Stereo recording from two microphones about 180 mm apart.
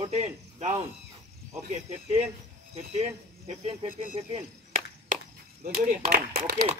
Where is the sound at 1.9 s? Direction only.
35° right (ahead or behind).